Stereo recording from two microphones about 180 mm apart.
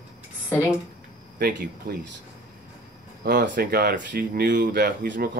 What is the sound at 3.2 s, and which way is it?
Speech, 55° right (ahead or behind).